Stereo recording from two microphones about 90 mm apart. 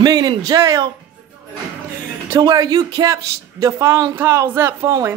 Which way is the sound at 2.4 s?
45° right (ahead or behind).